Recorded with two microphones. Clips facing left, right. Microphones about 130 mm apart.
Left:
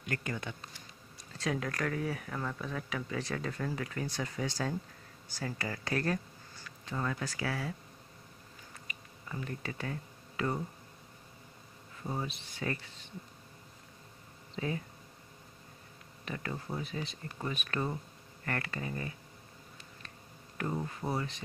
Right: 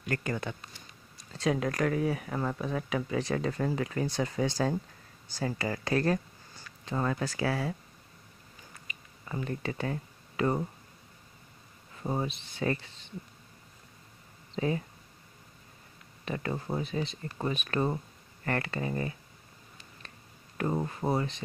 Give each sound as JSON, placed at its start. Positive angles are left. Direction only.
{"t": 0.1, "sound": "speech", "side_deg": -45}
{"t": 1.4, "sound": "speech", "side_deg": -20}
{"t": 6.9, "sound": "speech", "side_deg": -40}
{"t": 9.3, "sound": "speech", "side_deg": -35}
{"t": 12.0, "sound": "speech", "side_deg": -40}
{"t": 12.3, "sound": "speech", "side_deg": -25}
{"t": 14.5, "sound": "a sound", "side_deg": -30}
{"t": 16.7, "sound": "speech", "side_deg": -30}
{"t": 20.6, "sound": "speech", "side_deg": -45}